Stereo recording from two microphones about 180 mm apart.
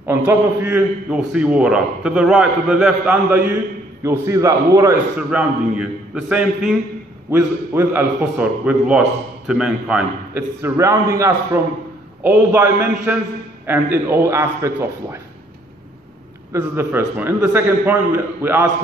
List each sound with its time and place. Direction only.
0.0 s a man's voice: 15° right (ahead or behind)
5.1 s a man's voice: 5° right (ahead or behind)
7.2 s a man's voice: 15° right (ahead or behind)
16.5 s a man's voice: 10° right (ahead or behind)